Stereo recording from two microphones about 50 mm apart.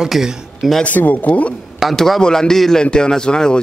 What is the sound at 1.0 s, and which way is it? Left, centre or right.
Speech, left.